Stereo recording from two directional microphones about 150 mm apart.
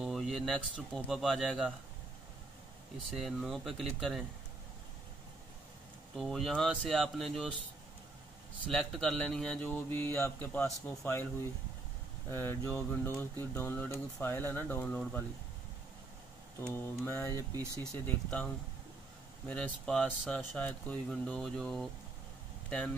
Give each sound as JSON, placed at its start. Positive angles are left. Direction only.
{"t": 0.0, "sound": "speech", "side_deg": 0}
{"t": 3.1, "sound": "speech", "side_deg": 0}
{"t": 6.1, "sound": "speech", "side_deg": 0}
{"t": 8.6, "sound": "speech", "side_deg": 0}
{"t": 12.3, "sound": "speech", "side_deg": 15}
{"t": 16.6, "sound": "speech", "side_deg": 15}